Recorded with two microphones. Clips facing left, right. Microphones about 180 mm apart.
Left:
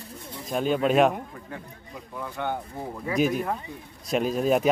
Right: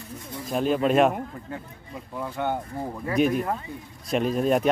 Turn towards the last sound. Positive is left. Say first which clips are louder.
# right 1 dB
turn(degrees=0)  # may be behind; listen again after turning